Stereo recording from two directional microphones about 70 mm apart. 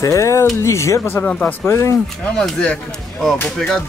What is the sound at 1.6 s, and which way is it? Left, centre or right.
Speech, left.